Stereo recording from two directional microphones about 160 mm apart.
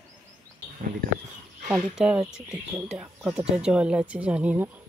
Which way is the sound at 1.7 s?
5° right (ahead or behind).